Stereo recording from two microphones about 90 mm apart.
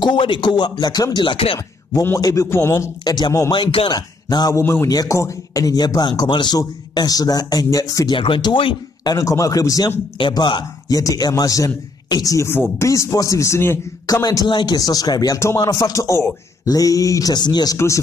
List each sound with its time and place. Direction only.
0.0 s speech: 60° left (ahead or behind); by 1.6 s 80° left
2.1 s a man's voice: 35° left (ahead or behind)
2.7 s speech: 45° left (ahead or behind)
3.5 s speech: 90° left
3.9 s speech: 50° left (ahead or behind)
4.6 s a man's voice: 25° left (ahead or behind)
4.8 s speech: 40° left (ahead or behind)
8.1 s speech: 60° left (ahead or behind)
9.0 s a man's voice: 40° left (ahead or behind)
10.3 s speech: 55° left (ahead or behind)
10.9 s a man's voice: 40° left (ahead or behind)
14.0 s speech: 45° left (ahead or behind)
15.3 s a man's voice: 30° left (ahead or behind); by 17.7 s 50° left (ahead or behind)
17.7 s a man's voice: 35° left (ahead or behind)